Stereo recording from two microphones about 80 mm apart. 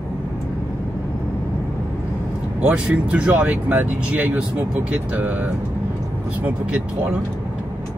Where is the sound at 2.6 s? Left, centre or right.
Centre.